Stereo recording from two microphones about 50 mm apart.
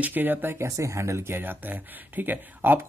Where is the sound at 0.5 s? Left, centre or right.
Right.